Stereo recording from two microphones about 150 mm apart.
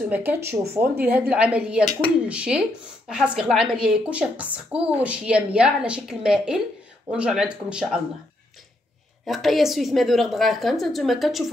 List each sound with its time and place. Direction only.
0.1 s a woman's voice: 10° right (ahead or behind)
9.2 s a woman's voice: centre (ahead or behind)